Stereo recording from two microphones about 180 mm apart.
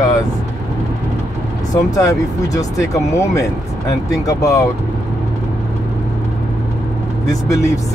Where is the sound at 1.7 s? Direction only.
20° left (ahead or behind).